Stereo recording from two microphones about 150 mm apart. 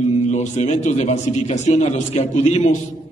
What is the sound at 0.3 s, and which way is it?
A man's voice, 50° left (ahead or behind).